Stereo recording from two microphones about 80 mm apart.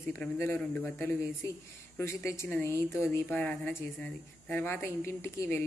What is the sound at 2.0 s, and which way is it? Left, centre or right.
Speech, left.